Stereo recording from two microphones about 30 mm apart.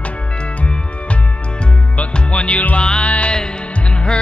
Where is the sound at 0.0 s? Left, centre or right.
Left.